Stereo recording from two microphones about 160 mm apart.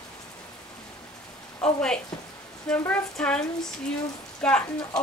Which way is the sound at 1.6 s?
5° left (ahead or behind).